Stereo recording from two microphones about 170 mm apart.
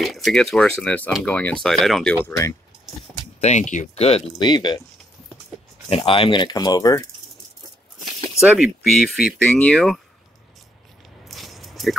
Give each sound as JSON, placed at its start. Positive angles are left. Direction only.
{"t": 0.0, "sound": "speech", "side_deg": 0}
{"t": 2.2, "sound": "speech", "side_deg": 20}
{"t": 3.3, "sound": "speech", "side_deg": 40}
{"t": 5.9, "sound": "speech", "side_deg": 30}
{"t": 8.0, "sound": "a sound", "side_deg": 0}
{"t": 9.0, "sound": "speech", "side_deg": 0}
{"t": 11.2, "sound": "biting", "side_deg": 0}